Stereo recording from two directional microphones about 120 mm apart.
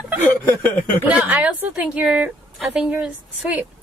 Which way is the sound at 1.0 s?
10° right (ahead or behind).